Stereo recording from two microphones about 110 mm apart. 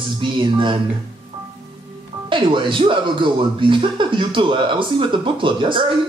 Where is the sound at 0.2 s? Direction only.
50° right (ahead or behind).